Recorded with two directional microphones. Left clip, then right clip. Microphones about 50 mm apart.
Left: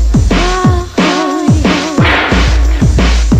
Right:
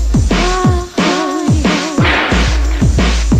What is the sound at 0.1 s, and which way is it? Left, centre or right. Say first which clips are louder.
Music: left 2 dB; centre.